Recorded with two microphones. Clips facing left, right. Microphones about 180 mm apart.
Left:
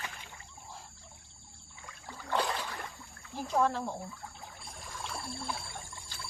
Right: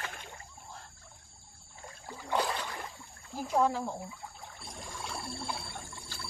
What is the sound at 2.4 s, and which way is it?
Boat, centre (ahead or behind).